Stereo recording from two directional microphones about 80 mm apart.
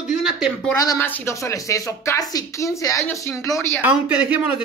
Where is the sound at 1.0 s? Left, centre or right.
Left.